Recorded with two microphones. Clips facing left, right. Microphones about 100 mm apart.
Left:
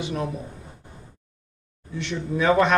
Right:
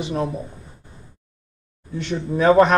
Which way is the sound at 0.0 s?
30° right (ahead or behind).